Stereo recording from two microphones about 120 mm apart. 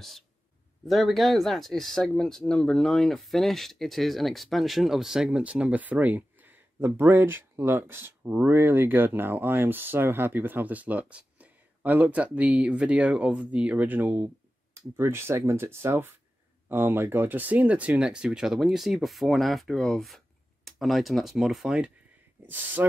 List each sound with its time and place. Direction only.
0.8 s speech: centre (ahead or behind)
22.5 s speech: 15° right (ahead or behind)